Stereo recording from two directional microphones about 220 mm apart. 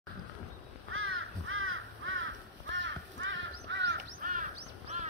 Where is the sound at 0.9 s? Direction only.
65° right (ahead or behind).